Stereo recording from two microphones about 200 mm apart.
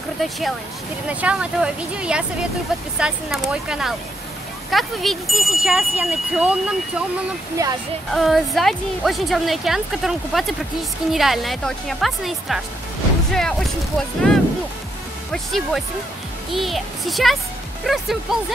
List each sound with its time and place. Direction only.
1.0 s speech: 5° right (ahead or behind)
7.6 s speech: 15° right (ahead or behind)
8.1 s speech: centre (ahead or behind)